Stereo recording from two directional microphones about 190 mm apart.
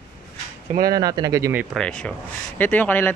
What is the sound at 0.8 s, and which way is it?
Speech, 20° right (ahead or behind).